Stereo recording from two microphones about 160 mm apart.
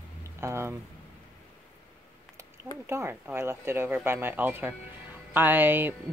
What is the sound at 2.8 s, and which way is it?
Speech, 15° right (ahead or behind).